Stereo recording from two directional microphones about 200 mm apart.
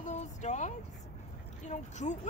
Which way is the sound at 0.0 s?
35° left (ahead or behind).